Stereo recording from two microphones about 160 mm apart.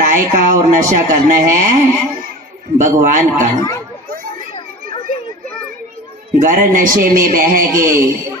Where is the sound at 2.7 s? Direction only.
55° right (ahead or behind).